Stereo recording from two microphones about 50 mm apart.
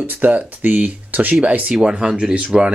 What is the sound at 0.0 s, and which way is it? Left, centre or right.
Speech, right.